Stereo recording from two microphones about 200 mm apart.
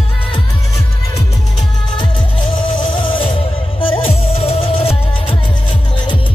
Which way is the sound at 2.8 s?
25° left (ahead or behind).